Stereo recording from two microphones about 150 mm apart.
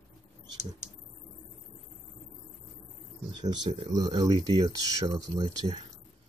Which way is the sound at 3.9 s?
25° right (ahead or behind).